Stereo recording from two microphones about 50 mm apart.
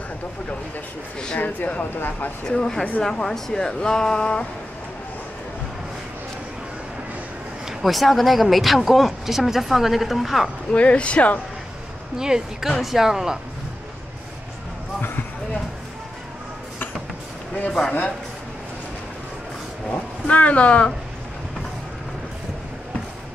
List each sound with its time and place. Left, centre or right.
1.4 s speech: left
2.4 s speech: centre
7.6 s speech: centre
10.7 s speech: left
12.2 s speech: centre
17.6 s speech: left
19.9 s speech: left